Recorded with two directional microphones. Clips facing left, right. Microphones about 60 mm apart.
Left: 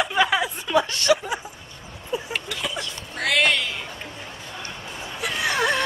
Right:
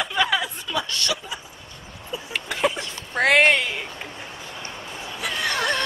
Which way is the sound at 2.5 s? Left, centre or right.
Right.